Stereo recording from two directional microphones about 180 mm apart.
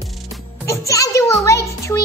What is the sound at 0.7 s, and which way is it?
Music, 15° left (ahead or behind).